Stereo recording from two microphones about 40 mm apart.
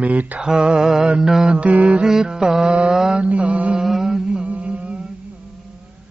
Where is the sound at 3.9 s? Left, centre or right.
Centre.